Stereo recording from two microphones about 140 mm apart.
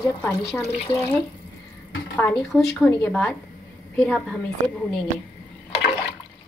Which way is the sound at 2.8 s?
5° left (ahead or behind).